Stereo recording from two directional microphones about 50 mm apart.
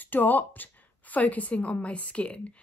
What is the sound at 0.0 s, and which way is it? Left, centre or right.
A woman's voice, left.